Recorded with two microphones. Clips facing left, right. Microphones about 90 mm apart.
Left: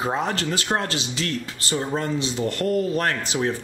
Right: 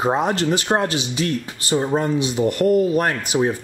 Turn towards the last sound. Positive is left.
turn(degrees=-15)  # may be behind; listen again after turning